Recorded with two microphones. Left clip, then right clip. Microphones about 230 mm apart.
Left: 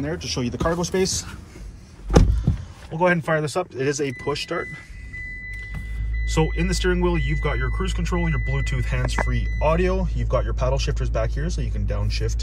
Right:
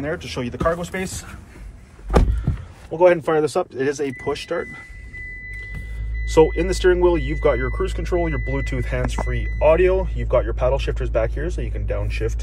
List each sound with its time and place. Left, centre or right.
0.0 s speech: centre
0.7 s speech: left
2.9 s speech: centre
6.2 s speech: centre